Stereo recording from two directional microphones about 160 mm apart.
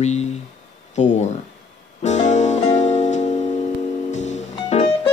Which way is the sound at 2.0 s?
45° left (ahead or behind).